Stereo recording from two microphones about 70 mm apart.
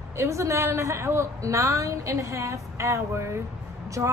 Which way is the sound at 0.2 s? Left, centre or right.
Right.